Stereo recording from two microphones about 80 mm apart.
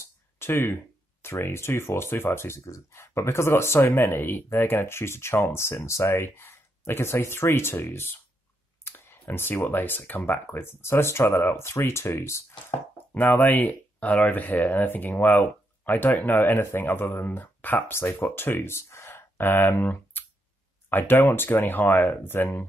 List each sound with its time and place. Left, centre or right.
0.0 s a sound: left
1.2 s speech: left
8.8 s clicking: left
9.3 s speech: left